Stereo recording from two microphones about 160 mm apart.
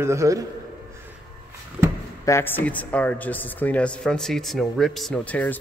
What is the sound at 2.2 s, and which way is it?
Speech, 15° left (ahead or behind).